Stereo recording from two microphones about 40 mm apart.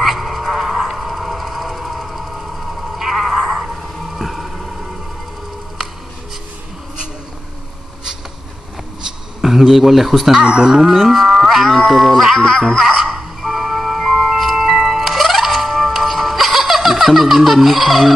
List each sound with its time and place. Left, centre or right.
0.0 s a sound: centre
9.4 s speech: centre
10.4 s speech: right
10.7 s livestock: centre
11.9 s speech: centre
12.4 s music: centre
12.8 s music: centre